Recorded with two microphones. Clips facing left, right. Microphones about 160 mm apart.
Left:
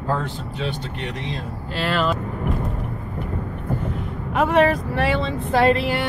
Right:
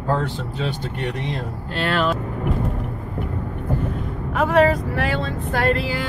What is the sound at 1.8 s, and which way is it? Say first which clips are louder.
Speech: right 1 dB; centre (ahead or behind).